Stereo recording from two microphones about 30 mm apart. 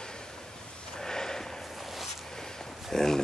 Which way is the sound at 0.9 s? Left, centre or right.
Left.